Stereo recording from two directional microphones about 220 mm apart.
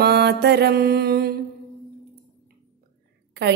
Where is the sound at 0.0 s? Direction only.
45° right (ahead or behind).